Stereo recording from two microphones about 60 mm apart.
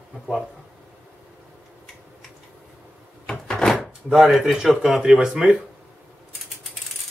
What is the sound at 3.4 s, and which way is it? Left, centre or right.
Door, centre.